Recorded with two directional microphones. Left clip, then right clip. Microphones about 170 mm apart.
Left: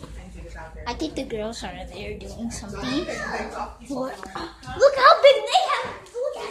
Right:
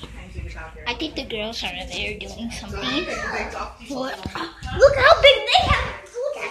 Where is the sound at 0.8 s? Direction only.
25° left (ahead or behind).